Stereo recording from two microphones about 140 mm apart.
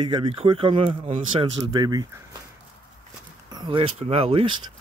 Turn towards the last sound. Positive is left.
turn(degrees=-40)  # may be behind; listen again after turning